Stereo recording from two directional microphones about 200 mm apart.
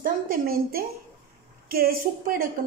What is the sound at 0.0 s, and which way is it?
Speech, 45° right (ahead or behind).